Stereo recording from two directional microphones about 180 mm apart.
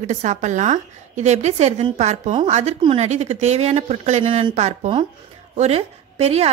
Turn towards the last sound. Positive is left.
turn(degrees=-35)  # may be behind; listen again after turning